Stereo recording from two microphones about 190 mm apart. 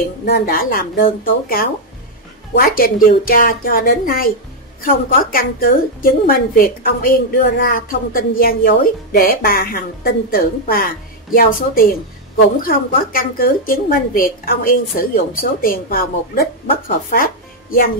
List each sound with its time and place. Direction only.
0.2 s a woman's voice: 50° left (ahead or behind)